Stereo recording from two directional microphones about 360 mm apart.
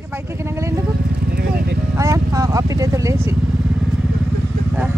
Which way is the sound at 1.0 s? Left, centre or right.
Right.